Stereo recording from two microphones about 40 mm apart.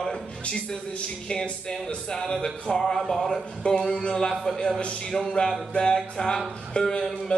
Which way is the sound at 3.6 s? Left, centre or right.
Left.